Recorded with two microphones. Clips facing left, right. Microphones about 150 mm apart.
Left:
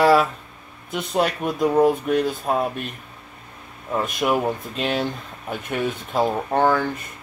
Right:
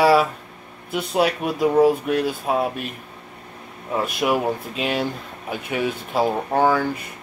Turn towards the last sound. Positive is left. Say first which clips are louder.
# right 1 dB
turn(degrees=-5)  # may be behind; listen again after turning